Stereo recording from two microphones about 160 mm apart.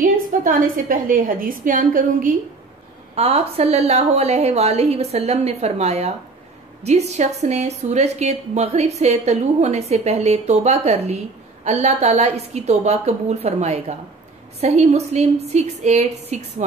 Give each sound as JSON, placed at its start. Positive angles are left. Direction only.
{"t": 0.0, "sound": "a woman's voice", "side_deg": -60}
{"t": 3.2, "sound": "a woman's voice", "side_deg": -40}